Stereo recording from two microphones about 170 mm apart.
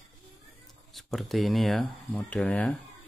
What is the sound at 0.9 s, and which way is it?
Speech, centre (ahead or behind).